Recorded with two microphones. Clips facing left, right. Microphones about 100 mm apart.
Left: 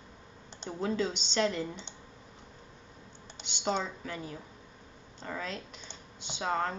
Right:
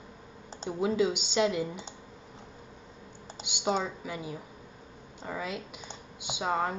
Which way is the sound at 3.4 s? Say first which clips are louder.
Right 2 dB; 10° right (ahead or behind).